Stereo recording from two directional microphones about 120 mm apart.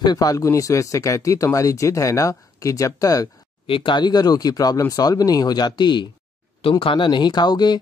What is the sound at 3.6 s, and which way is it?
Speech, 45° left (ahead or behind).